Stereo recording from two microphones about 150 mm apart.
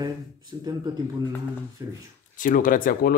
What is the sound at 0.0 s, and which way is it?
Speech, 25° right (ahead or behind).